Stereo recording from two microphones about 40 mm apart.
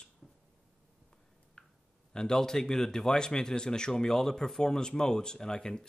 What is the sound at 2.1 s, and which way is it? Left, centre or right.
Speech, centre.